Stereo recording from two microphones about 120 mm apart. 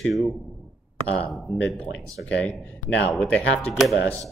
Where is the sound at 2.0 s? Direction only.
30° right (ahead or behind).